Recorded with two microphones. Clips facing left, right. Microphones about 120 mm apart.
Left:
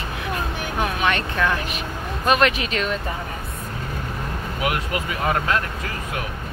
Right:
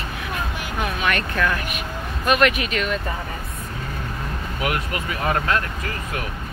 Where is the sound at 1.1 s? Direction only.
25° left (ahead or behind).